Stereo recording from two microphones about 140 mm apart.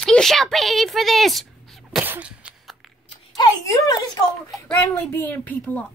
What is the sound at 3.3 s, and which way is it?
Speech, 25° left (ahead or behind).